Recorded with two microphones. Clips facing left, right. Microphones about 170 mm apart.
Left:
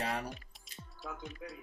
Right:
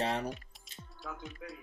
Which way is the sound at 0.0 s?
25° right (ahead or behind).